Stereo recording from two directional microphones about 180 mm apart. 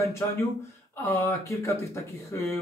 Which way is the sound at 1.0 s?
15° left (ahead or behind).